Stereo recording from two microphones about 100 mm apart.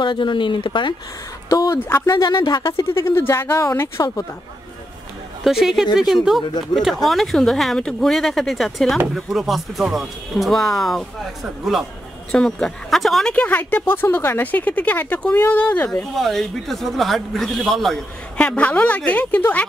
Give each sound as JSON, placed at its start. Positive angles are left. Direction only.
{"t": 0.0, "sound": "speech", "side_deg": 50}
{"t": 1.5, "sound": "a sound", "side_deg": 40}
{"t": 1.8, "sound": "speech", "side_deg": 20}
{"t": 2.0, "sound": "speech", "side_deg": 40}
{"t": 2.7, "sound": "speech", "side_deg": 25}
{"t": 5.4, "sound": "speech", "side_deg": -5}
{"t": 13.3, "sound": "speech", "side_deg": 15}
{"t": 16.2, "sound": "speech", "side_deg": 0}
{"t": 18.4, "sound": "speech", "side_deg": 15}